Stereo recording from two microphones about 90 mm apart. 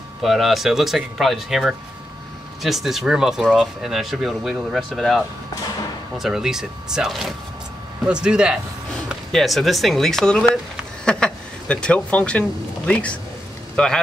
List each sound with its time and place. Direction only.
0.2 s speech: centre (ahead or behind)
9.3 s speech: centre (ahead or behind)